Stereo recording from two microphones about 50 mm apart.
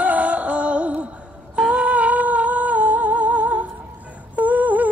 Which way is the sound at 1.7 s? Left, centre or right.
Right.